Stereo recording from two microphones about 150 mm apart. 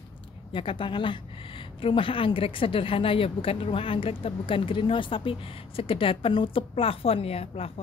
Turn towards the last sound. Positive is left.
turn(degrees=40)  # may be behind; listen again after turning